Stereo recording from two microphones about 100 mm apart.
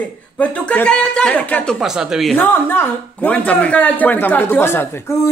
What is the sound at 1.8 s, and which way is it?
Speech, 5° right (ahead or behind).